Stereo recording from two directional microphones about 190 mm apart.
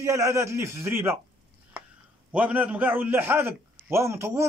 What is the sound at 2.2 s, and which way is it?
A man's voice, 10° right (ahead or behind).